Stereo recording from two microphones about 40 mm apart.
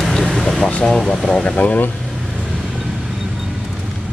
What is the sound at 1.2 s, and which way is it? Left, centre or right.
Speech, left.